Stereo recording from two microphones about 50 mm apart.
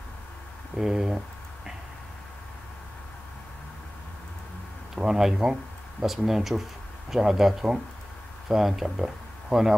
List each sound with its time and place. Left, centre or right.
0.7 s speech: centre
4.9 s speech: centre